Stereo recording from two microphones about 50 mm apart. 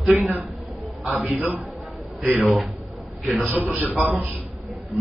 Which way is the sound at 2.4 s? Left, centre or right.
Centre.